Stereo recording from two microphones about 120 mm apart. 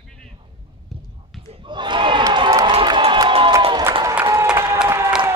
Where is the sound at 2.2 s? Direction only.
35° right (ahead or behind).